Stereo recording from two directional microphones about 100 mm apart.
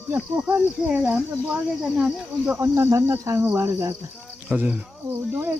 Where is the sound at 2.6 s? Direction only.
30° right (ahead or behind).